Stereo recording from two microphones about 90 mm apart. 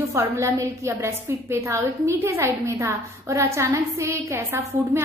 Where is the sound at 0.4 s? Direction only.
35° right (ahead or behind).